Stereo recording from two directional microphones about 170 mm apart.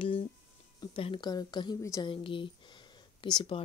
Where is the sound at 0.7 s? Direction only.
30° left (ahead or behind).